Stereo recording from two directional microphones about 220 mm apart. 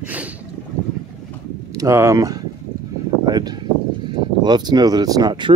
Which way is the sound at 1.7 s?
15° right (ahead or behind).